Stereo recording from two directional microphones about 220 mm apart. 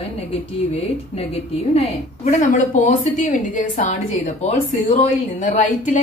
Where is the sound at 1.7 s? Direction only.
30° left (ahead or behind).